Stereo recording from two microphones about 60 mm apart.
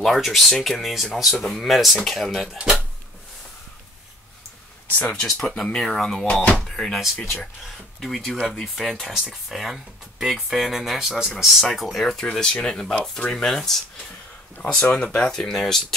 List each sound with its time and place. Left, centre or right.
0.0 s speech: centre
4.8 s speech: left
5.1 s speech: centre
13.3 s speech: centre
14.7 s speech: centre